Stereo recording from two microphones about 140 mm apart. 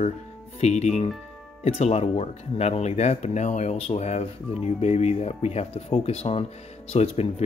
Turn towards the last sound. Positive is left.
turn(degrees=50)  # may be behind; listen again after turning